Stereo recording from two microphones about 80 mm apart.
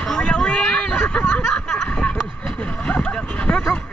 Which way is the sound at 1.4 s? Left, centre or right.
Centre.